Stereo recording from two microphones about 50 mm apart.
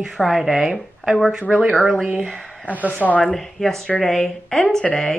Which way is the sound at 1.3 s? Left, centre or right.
Centre.